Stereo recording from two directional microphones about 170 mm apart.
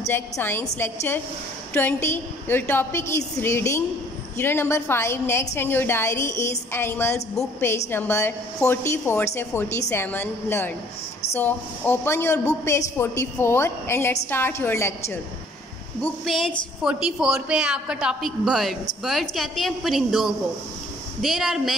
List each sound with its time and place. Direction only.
0.0 s a woman's voice: 15° left (ahead or behind)
16.0 s a woman's voice: centre (ahead or behind)